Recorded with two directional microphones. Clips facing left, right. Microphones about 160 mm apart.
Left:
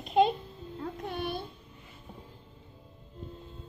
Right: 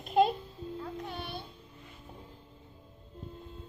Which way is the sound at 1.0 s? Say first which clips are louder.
Left 6 dB; 55° left (ahead or behind).